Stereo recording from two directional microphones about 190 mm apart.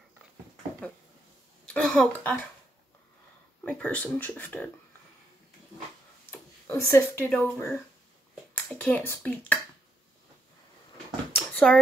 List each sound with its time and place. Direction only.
1.7 s speech: 5° left (ahead or behind)
3.6 s speech: 5° left (ahead or behind)
6.3 s speech: 10° left (ahead or behind)
11.3 s a sound: 5° left (ahead or behind)